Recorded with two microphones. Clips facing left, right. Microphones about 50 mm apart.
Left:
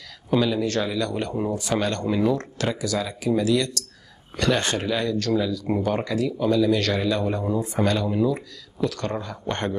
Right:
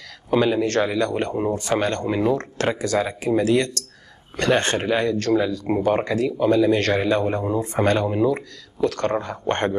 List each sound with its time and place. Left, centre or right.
0.4 s speech: right